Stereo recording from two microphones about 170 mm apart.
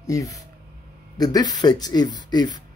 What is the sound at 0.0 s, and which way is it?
Speech, 20° left (ahead or behind).